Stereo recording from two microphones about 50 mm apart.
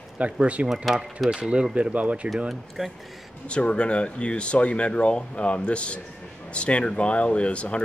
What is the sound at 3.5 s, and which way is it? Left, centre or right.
Speech, left.